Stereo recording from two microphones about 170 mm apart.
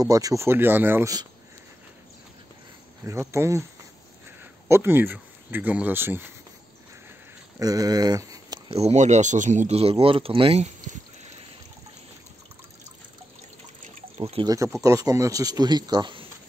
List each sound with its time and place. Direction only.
0.0 s speech: 20° right (ahead or behind)
3.1 s speech: 15° right (ahead or behind)
4.6 s speech: 15° right (ahead or behind)
7.5 s speech: 20° right (ahead or behind)
8.6 s speech: 40° right (ahead or behind)
14.1 s speech: 35° right (ahead or behind)
14.4 s speech: 20° right (ahead or behind)